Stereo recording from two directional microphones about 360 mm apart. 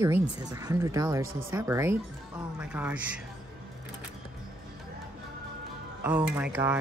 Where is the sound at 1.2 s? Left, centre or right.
Right.